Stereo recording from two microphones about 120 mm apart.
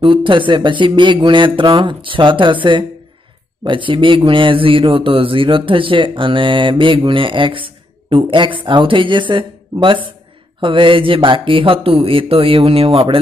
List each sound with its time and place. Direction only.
0.0 s speech: 45° right (ahead or behind)